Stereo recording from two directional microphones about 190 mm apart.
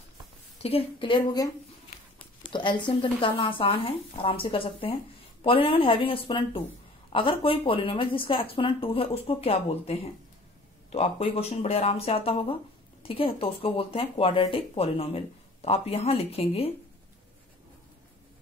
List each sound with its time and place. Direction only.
0.6 s speech: 30° left (ahead or behind)